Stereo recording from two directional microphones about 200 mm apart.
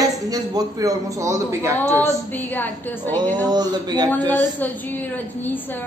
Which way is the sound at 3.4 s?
20° right (ahead or behind).